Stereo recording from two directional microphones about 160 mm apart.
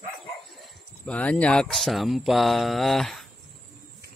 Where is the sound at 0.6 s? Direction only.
10° left (ahead or behind).